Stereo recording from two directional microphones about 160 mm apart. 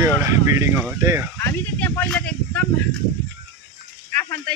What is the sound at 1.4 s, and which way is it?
Speech, 15° left (ahead or behind).